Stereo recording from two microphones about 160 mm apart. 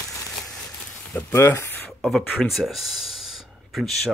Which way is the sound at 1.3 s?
15° left (ahead or behind).